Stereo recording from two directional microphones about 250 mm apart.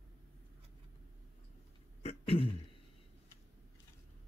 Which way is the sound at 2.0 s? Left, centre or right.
Left.